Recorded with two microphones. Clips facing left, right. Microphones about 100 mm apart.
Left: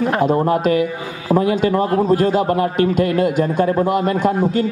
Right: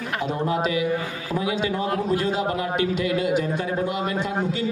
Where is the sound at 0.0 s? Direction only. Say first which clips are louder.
Left 10 dB; 45° left (ahead or behind).